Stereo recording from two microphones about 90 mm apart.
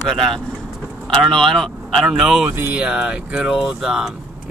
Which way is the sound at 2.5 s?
25° right (ahead or behind).